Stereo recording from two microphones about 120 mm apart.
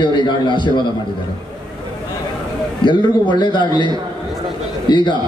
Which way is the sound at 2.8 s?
40° left (ahead or behind).